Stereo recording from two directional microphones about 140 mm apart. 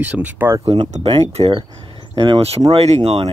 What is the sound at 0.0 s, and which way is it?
Speech, 10° right (ahead or behind).